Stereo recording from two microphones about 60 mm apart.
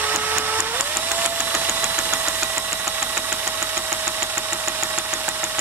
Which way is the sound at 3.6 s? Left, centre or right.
Right.